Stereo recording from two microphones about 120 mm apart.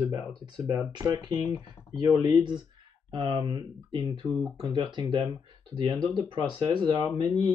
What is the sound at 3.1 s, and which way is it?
Speech, 40° right (ahead or behind).